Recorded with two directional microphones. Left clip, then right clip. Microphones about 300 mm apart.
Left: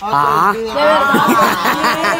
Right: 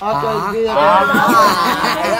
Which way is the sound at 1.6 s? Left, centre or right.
Centre.